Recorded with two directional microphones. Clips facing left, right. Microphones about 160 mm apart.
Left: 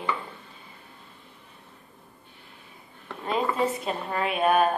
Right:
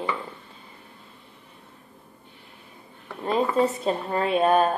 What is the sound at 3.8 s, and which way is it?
Speech, 30° right (ahead or behind).